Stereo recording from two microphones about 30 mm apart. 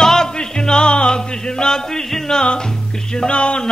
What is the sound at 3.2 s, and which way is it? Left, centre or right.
Speech, left.